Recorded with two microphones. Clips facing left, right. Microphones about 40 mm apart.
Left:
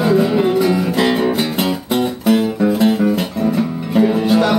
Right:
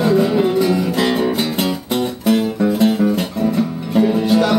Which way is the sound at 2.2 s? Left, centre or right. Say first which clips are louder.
Left 1 dB; centre.